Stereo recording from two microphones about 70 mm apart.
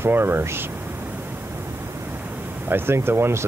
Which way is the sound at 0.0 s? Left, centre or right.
Right.